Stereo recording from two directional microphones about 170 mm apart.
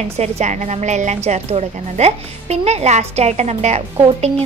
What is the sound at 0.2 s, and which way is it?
A woman's voice, 40° right (ahead or behind).